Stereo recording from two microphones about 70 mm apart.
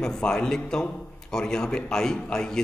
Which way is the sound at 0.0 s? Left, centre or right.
Centre.